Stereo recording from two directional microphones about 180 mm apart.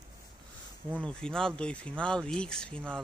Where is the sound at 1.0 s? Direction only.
5° left (ahead or behind).